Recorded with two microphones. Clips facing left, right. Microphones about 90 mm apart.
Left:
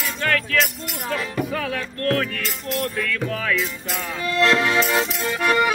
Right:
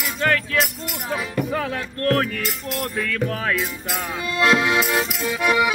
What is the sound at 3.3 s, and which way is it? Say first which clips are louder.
Music: even; 35° right (ahead or behind).